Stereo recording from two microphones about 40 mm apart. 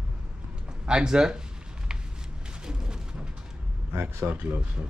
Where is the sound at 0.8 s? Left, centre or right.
Centre.